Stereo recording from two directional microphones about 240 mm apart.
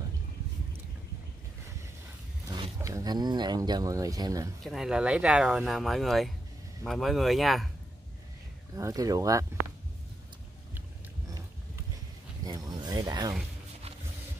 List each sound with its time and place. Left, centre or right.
2.4 s speech: centre
4.6 s speech: centre
8.7 s speech: centre
11.2 s a sound: centre